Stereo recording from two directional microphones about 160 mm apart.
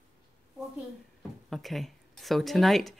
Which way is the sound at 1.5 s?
Centre (ahead or behind).